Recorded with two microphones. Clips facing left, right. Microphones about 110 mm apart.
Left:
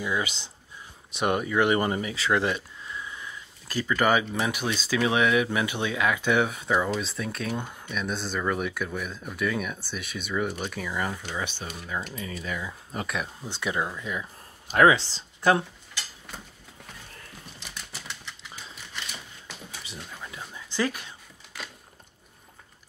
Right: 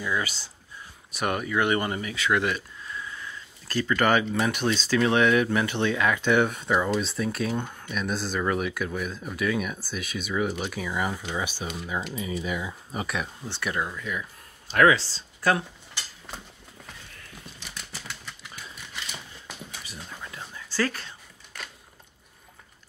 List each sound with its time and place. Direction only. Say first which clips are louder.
0.0 s speech: even; 20° left (ahead or behind); by 13.5 s centre (ahead or behind)
13.5 s speech: left 1 dB; 20° left (ahead or behind)
19.8 s a sound: even; 20° left (ahead or behind)